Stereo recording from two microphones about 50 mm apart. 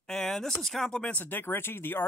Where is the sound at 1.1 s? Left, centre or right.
Left.